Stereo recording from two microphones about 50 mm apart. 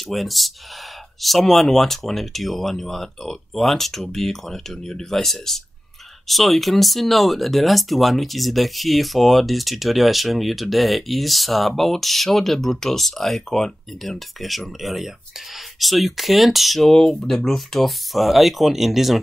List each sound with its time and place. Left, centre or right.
0.1 s speech: centre
17.1 s speech: centre
17.5 s speech: centre